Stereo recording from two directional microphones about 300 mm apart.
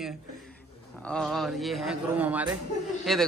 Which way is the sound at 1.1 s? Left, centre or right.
Centre.